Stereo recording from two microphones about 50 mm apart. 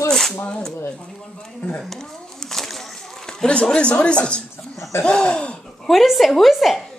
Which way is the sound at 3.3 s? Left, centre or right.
Centre.